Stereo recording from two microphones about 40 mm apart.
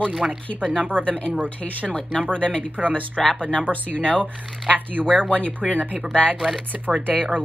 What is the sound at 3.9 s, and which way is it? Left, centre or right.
Speech, left.